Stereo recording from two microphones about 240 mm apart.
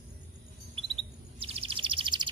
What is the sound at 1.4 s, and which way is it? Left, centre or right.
Bird, right.